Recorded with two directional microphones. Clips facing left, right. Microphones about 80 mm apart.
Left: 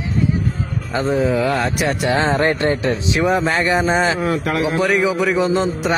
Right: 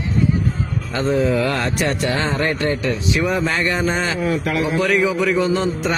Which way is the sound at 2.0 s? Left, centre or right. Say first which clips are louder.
Left 4 dB; left.